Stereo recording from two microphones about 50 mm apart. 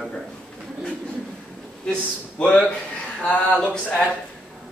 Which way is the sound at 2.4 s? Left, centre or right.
Left.